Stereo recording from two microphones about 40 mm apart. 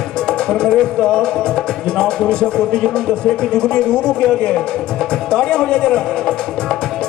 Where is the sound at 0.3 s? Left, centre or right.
Centre.